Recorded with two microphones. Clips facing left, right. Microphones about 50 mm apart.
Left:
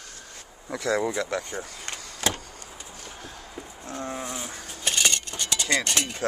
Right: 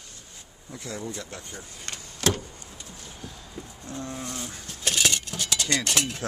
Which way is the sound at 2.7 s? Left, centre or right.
Centre.